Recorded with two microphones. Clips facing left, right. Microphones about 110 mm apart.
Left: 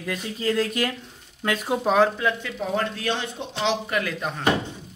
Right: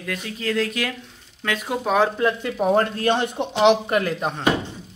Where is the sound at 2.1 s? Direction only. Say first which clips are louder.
Right 4 dB; 40° right (ahead or behind).